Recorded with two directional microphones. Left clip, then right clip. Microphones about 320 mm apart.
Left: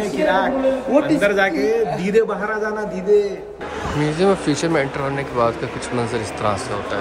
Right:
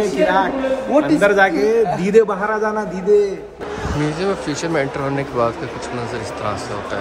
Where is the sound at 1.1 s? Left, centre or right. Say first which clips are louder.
Right 3 dB; centre.